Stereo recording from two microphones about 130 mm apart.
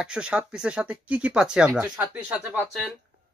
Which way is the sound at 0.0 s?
5° right (ahead or behind).